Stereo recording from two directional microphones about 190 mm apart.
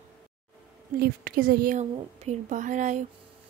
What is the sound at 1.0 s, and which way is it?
A woman's voice, 50° right (ahead or behind).